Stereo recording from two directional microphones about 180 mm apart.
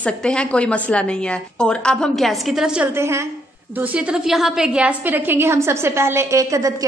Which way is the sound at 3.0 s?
15° right (ahead or behind).